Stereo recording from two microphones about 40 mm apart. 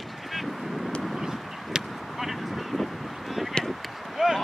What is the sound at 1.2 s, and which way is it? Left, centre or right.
Vehicle, centre.